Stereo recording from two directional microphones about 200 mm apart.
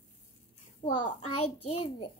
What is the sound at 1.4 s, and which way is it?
Speech, 30° left (ahead or behind).